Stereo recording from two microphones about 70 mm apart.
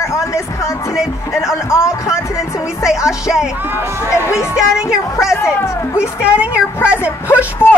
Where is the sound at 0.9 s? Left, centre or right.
Centre.